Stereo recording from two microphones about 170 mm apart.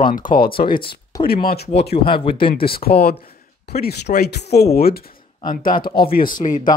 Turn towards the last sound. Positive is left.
turn(degrees=50)  # may be behind; listen again after turning